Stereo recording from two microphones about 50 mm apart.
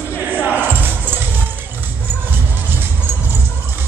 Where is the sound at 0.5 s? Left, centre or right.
Right.